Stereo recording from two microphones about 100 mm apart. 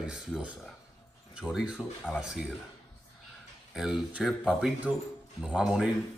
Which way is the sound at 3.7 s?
5° right (ahead or behind).